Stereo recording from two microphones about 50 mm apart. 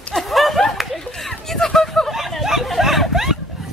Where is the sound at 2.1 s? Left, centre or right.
Centre.